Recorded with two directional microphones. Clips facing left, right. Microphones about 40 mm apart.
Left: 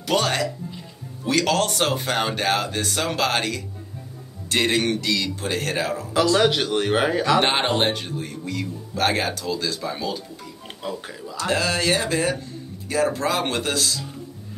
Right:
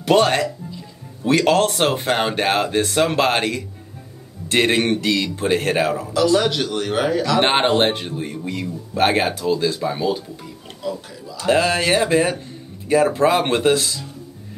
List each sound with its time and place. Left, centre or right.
0.0 s a man's voice: right
6.4 s speech: centre
7.3 s a man's voice: right
10.7 s speech: left
11.3 s a man's voice: right